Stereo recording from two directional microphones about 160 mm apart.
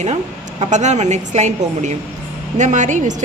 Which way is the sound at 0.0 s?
45° right (ahead or behind).